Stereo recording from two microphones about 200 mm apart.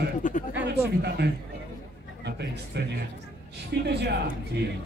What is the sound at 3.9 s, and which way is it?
Speech, 55° right (ahead or behind).